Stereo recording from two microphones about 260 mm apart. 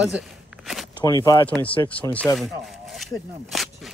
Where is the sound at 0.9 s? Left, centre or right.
Centre.